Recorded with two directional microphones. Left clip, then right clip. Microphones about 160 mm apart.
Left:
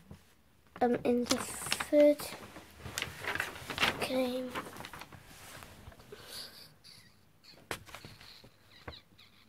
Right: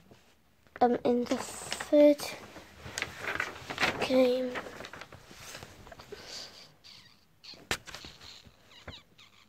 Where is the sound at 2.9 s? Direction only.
5° left (ahead or behind).